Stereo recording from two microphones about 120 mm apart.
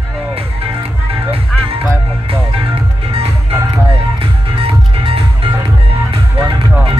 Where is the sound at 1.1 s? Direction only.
55° right (ahead or behind).